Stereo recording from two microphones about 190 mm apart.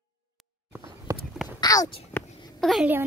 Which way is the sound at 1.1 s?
15° right (ahead or behind).